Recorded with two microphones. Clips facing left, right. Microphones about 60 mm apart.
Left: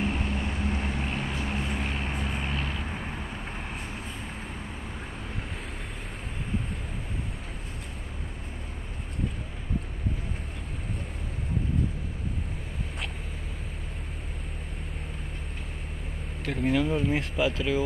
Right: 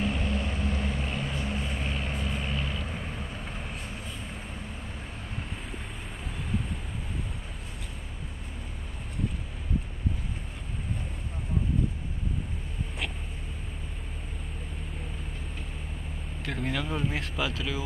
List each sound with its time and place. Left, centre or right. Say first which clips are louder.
0.0 s vehicle: even; left
2.8 s vehicle: left 1 dB; left
16.4 s speech: left 5 dB; left
16.7 s speech: left 7 dB; left
17.2 s speech: left 5 dB; left